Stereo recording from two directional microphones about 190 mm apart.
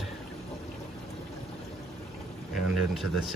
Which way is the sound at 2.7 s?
Centre (ahead or behind).